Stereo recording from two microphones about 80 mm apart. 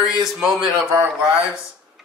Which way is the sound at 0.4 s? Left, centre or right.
Centre.